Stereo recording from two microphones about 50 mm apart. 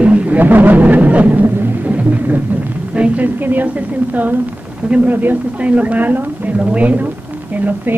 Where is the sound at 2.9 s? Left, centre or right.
Right.